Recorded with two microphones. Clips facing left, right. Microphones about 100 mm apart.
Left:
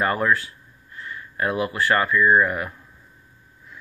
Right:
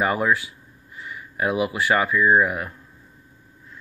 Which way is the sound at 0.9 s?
15° right (ahead or behind).